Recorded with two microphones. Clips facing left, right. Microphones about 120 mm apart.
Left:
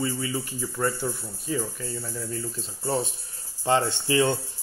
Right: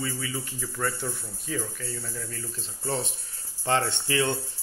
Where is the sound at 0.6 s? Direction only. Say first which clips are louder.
Left 3 dB; 15° left (ahead or behind).